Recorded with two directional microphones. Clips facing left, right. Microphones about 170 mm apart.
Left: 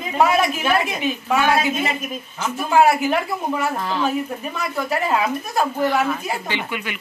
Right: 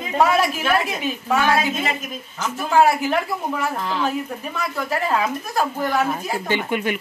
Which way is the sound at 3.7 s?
10° left (ahead or behind).